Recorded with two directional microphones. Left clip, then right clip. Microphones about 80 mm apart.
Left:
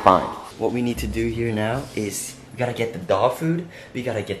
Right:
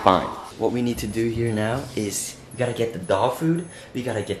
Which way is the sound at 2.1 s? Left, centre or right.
Centre.